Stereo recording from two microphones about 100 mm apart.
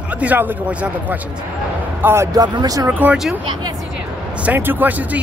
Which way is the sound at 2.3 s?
40° right (ahead or behind).